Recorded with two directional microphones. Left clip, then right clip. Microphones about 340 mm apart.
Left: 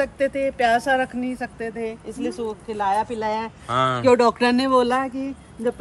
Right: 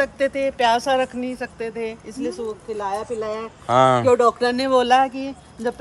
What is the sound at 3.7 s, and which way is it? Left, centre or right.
Speech, centre.